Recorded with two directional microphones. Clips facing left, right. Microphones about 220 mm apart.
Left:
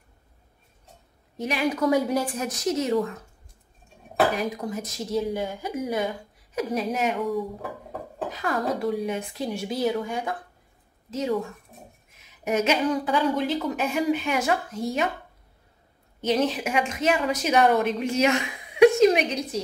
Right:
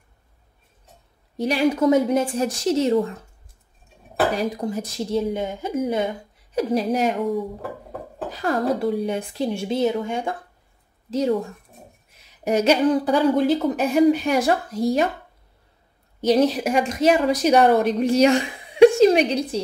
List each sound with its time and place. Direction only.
1.4 s a woman's voice: 30° right (ahead or behind)
4.4 s a woman's voice: 30° right (ahead or behind)
12.4 s a woman's voice: 35° right (ahead or behind)
16.2 s a woman's voice: 40° right (ahead or behind)